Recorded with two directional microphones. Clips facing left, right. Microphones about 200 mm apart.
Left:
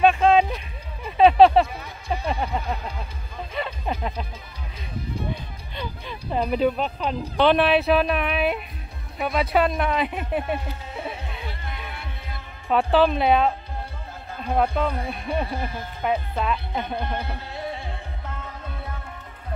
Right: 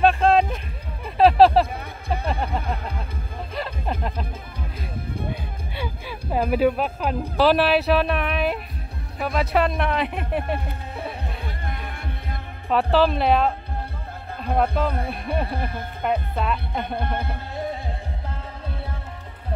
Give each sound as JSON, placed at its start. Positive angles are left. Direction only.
{"t": 0.0, "sound": "a sound", "side_deg": 5}
{"t": 2.6, "sound": "music", "side_deg": -55}
{"t": 3.5, "sound": "music", "side_deg": 0}
{"t": 5.8, "sound": "music", "side_deg": -10}
{"t": 6.5, "sound": "speech", "side_deg": -5}
{"t": 11.2, "sound": "music", "side_deg": -55}
{"t": 12.6, "sound": "speech", "side_deg": 0}
{"t": 15.4, "sound": "speech", "side_deg": -55}
{"t": 16.0, "sound": "speech", "side_deg": 0}
{"t": 16.8, "sound": "music", "side_deg": -55}
{"t": 18.3, "sound": "music", "side_deg": -30}